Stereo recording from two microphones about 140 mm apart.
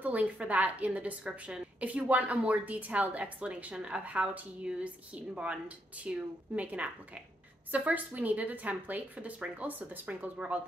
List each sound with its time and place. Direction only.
0.0 s a woman's voice: 10° right (ahead or behind)